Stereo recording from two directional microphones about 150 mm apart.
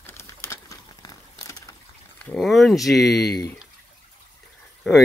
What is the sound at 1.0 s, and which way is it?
Crumpling, 25° left (ahead or behind).